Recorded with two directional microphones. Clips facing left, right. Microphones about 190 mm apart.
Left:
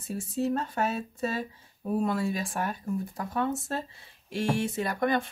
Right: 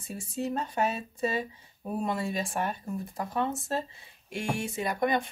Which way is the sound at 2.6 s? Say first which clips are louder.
Left 2 dB; centre (ahead or behind).